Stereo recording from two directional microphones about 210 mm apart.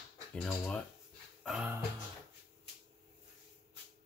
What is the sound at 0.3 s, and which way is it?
Speech, 5° left (ahead or behind).